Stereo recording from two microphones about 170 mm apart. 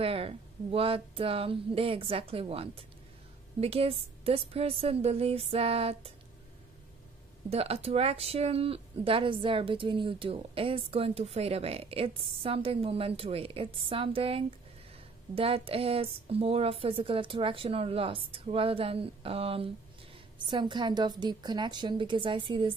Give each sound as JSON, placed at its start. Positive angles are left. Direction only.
{"t": 0.0, "sound": "speech", "side_deg": -35}
{"t": 7.4, "sound": "a woman's voice", "side_deg": -35}